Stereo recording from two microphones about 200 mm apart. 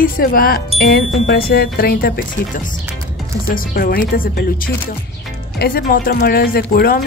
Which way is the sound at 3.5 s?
45° left (ahead or behind).